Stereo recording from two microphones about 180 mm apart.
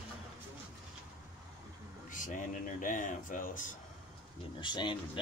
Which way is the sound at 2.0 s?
45° left (ahead or behind).